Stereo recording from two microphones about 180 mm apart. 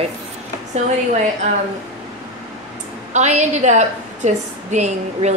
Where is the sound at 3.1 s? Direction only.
40° right (ahead or behind).